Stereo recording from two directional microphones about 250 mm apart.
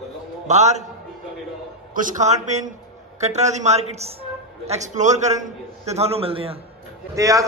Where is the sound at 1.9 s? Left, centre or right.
Right.